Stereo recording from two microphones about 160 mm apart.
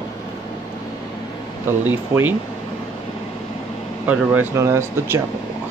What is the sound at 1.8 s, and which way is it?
Speech, 10° right (ahead or behind).